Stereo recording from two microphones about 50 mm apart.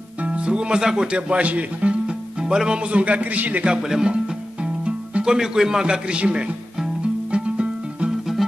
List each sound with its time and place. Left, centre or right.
0.2 s speech: right
3.6 s speech: centre
7.2 s music: right